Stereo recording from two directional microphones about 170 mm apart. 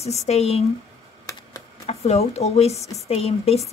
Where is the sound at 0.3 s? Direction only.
35° left (ahead or behind).